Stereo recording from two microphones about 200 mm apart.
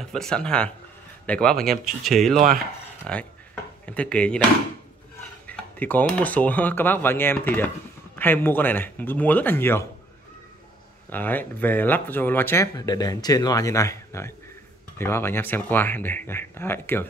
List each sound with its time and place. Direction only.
0.0 s speech: 5° left (ahead or behind)
2.3 s speech: 45° right (ahead or behind)
3.1 s speech: 5° left (ahead or behind)
5.5 s speech: 10° left (ahead or behind)
11.1 s speech: 10° left (ahead or behind)